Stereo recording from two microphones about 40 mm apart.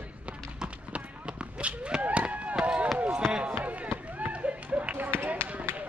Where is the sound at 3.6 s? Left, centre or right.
Right.